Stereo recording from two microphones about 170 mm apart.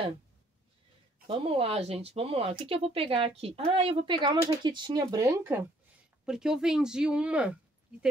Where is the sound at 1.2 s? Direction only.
30° right (ahead or behind).